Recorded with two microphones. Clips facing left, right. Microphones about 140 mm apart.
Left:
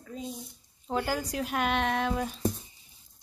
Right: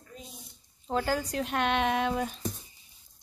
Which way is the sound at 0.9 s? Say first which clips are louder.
Right 1 dB; 5° left (ahead or behind).